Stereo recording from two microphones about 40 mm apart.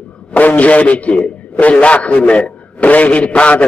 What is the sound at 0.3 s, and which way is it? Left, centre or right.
A man's voice, left.